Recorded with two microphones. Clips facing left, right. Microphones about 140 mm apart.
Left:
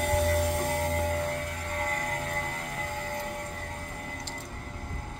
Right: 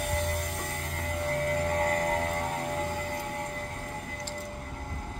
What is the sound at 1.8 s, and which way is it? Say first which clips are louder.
Music: right 5 dB; 35° right (ahead or behind).